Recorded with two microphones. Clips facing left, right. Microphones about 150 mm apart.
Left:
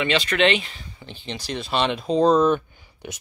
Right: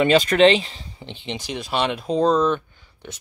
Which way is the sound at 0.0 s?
40° right (ahead or behind).